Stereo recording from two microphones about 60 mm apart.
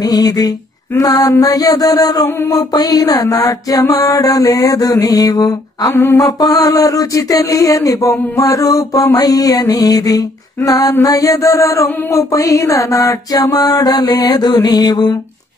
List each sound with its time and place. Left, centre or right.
0.0 s mantra: left
6.1 s a sound: left
8.4 s mantra: left